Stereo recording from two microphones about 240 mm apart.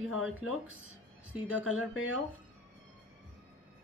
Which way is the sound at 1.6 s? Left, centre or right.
Left.